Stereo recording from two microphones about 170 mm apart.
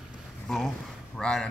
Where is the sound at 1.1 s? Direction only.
5° left (ahead or behind).